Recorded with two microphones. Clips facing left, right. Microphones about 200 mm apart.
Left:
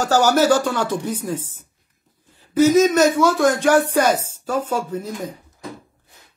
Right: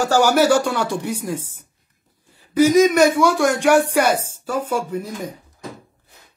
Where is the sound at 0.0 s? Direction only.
10° right (ahead or behind).